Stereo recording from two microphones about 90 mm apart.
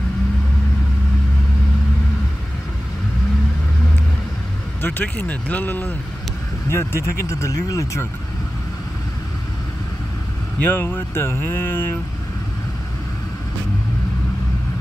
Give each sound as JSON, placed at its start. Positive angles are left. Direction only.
{"t": 4.8, "sound": "speech", "side_deg": 20}
{"t": 10.6, "sound": "speech", "side_deg": 25}